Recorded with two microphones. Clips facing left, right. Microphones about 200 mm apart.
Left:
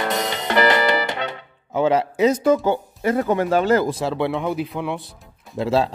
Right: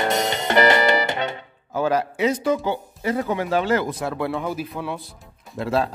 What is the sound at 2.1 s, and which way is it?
Speech, 40° left (ahead or behind).